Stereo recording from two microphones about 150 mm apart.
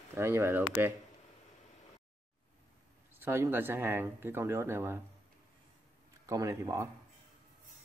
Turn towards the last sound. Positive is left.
turn(degrees=-20)  # may be behind; listen again after turning